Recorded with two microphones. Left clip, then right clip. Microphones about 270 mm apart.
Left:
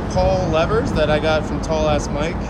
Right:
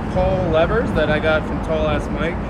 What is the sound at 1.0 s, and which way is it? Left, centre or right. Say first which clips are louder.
Speech: even; left.